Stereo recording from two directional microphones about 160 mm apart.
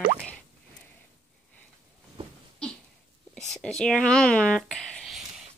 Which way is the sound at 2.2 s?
35° right (ahead or behind).